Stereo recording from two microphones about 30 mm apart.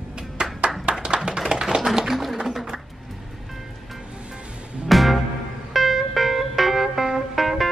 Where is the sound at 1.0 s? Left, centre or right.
Right.